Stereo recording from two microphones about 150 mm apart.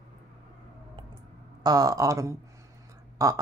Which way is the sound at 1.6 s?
25° right (ahead or behind).